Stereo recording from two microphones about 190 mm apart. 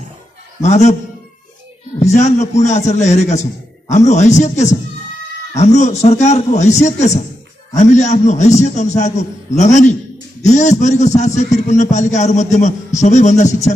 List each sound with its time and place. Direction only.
0.6 s a man's voice: 35° left (ahead or behind)
2.0 s a man's voice: 35° left (ahead or behind)